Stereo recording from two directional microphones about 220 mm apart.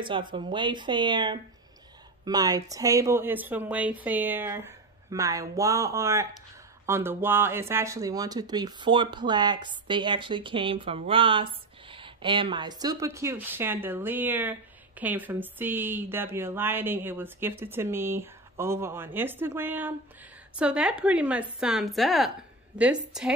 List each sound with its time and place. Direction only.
0.3 s a woman's voice: 20° right (ahead or behind); by 23.3 s 5° right (ahead or behind)